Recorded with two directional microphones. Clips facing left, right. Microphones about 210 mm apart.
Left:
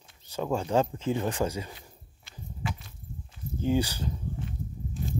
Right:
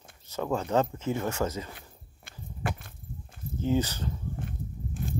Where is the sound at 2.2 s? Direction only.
55° right (ahead or behind).